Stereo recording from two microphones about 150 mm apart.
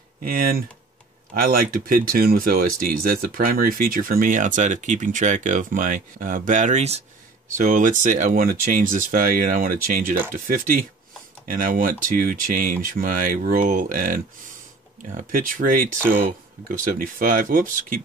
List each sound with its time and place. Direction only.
0.2 s speech: 75° right (ahead or behind); by 7.0 s 50° right (ahead or behind)
7.5 s speech: 60° right (ahead or behind)